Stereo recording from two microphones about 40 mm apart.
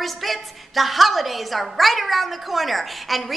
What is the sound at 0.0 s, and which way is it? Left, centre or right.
A woman's voice, centre.